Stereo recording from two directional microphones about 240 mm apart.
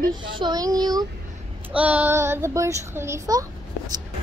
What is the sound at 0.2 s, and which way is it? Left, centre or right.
Speech, centre.